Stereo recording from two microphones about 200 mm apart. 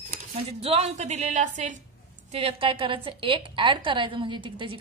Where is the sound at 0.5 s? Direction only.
30° right (ahead or behind).